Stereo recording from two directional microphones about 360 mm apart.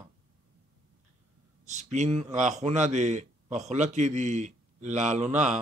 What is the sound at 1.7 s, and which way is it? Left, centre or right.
Speech, centre.